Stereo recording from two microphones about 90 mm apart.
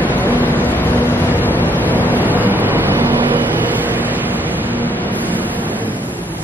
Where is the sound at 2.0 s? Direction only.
20° right (ahead or behind).